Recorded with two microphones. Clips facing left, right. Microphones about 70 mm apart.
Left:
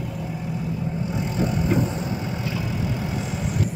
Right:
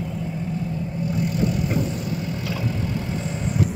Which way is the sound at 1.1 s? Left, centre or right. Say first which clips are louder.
Right 3 dB; left.